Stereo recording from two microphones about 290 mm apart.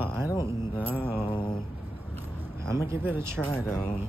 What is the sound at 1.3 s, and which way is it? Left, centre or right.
Mantra, centre.